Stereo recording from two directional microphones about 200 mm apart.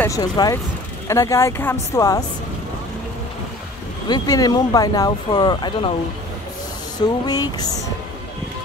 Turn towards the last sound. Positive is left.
turn(degrees=20)  # may be behind; listen again after turning